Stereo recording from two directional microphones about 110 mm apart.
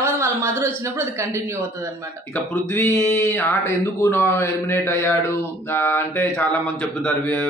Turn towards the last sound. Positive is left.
turn(degrees=15)  # may be behind; listen again after turning